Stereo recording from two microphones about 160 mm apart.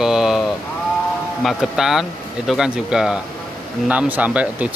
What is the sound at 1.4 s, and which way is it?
Speech, centre (ahead or behind).